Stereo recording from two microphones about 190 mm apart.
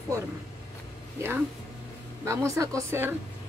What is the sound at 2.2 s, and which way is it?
Speech, 15° right (ahead or behind).